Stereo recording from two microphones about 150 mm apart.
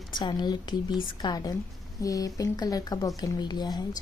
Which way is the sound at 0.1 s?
30° left (ahead or behind).